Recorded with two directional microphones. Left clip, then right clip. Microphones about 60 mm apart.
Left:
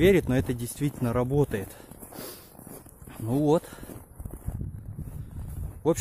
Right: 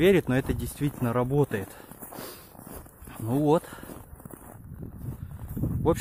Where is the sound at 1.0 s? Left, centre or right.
Centre.